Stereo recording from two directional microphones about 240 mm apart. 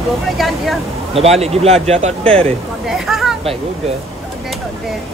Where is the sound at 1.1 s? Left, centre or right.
Right.